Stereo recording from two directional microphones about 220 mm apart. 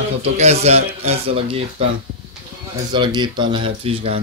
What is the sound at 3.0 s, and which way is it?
Speech, 20° right (ahead or behind).